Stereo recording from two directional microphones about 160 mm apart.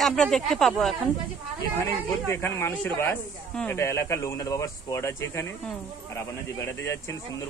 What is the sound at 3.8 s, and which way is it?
Speech, 15° left (ahead or behind).